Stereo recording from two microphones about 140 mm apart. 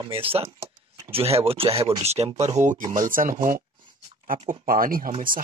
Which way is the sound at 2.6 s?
65° right (ahead or behind).